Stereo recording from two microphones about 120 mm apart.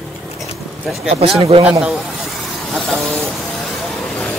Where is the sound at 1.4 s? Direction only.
45° right (ahead or behind).